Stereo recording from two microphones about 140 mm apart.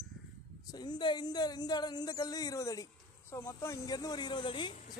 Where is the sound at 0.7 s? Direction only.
30° left (ahead or behind).